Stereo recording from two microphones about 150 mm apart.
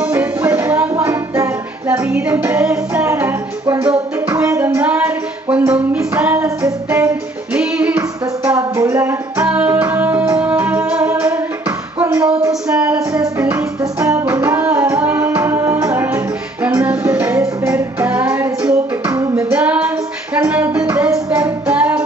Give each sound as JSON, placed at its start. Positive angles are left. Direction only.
{"t": 0.0, "sound": "music", "side_deg": -10}
{"t": 4.3, "sound": "a sound", "side_deg": -20}
{"t": 7.5, "sound": "music", "side_deg": -10}
{"t": 8.5, "sound": "music", "side_deg": -20}
{"t": 12.0, "sound": "a sound", "side_deg": -10}
{"t": 12.6, "sound": "music", "side_deg": -5}
{"t": 19.3, "sound": "female singing", "side_deg": -10}
{"t": 20.3, "sound": "music", "side_deg": -10}